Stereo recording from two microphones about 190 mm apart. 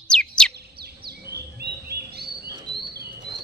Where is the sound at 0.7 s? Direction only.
55° right (ahead or behind).